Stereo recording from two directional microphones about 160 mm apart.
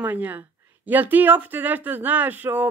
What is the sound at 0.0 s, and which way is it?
Speech, 10° right (ahead or behind).